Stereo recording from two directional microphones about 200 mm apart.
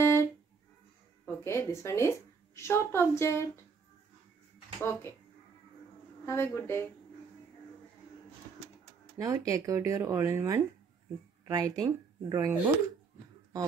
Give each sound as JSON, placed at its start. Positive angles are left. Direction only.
{"t": 0.0, "sound": "music", "side_deg": 15}
{"t": 1.2, "sound": "a woman's voice", "side_deg": 10}
{"t": 4.7, "sound": "speech", "side_deg": 10}
{"t": 6.2, "sound": "speech", "side_deg": 15}
{"t": 9.2, "sound": "speech", "side_deg": -15}